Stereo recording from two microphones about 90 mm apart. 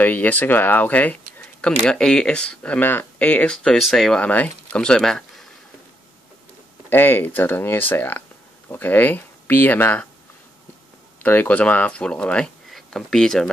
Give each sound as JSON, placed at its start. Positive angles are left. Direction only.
{"t": 0.0, "sound": "speech", "side_deg": 20}
{"t": 1.8, "sound": "speech", "side_deg": 5}
{"t": 3.7, "sound": "speech", "side_deg": 0}
{"t": 6.9, "sound": "speech", "side_deg": 20}
{"t": 11.2, "sound": "speech", "side_deg": 20}